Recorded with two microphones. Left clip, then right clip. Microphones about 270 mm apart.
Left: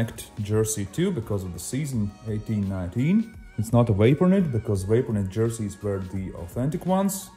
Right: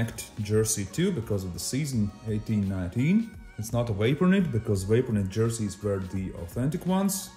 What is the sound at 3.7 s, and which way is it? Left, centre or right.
Speech, centre.